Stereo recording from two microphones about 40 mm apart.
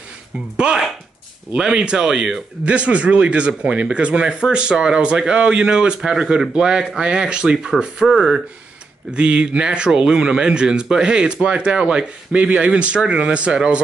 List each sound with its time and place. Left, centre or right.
1.6 s speech: right
2.0 s a man's voice: centre
2.6 s a man's voice: right
5.9 s a man's voice: centre
6.5 s speech: right
8.1 s a man's voice: centre
9.1 s speech: right